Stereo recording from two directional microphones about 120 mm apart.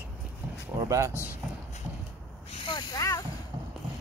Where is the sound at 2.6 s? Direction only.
35° left (ahead or behind).